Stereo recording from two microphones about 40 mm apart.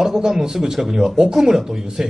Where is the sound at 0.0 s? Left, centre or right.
Centre.